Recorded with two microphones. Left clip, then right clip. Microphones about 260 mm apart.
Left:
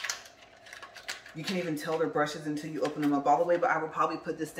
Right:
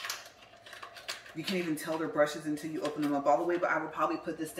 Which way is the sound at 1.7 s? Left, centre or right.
Left.